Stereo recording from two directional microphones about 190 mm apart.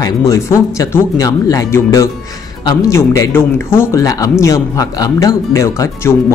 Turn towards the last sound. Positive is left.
turn(degrees=15)  # may be behind; listen again after turning